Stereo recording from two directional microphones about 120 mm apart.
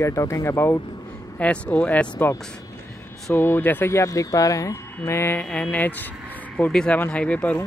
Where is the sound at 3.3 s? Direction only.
15° left (ahead or behind).